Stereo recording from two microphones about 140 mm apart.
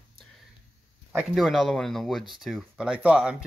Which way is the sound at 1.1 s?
Centre (ahead or behind).